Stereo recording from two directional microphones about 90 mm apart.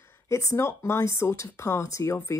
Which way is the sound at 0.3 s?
35° left (ahead or behind).